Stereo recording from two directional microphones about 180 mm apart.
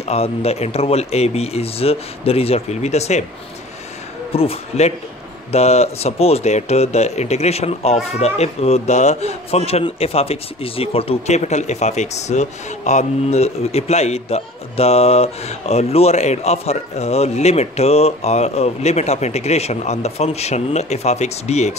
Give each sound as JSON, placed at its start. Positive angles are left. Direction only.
{"t": 0.0, "sound": "speech", "side_deg": 35}
{"t": 4.3, "sound": "speech", "side_deg": 35}